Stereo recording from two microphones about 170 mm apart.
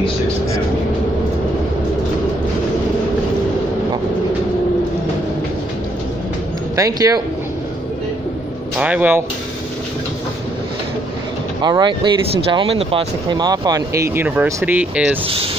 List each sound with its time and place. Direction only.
6.7 s speech: 20° right (ahead or behind)
8.7 s speech: 10° right (ahead or behind)
11.6 s speech: 25° right (ahead or behind); by 15.1 s 10° right (ahead or behind)
15.2 s speech: 35° right (ahead or behind)